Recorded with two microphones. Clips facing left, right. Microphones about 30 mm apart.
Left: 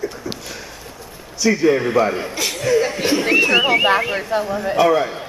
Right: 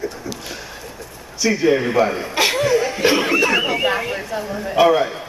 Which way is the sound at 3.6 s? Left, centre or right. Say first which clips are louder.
Left 4 dB; left.